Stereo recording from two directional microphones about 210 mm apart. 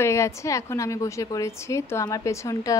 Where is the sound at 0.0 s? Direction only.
15° left (ahead or behind).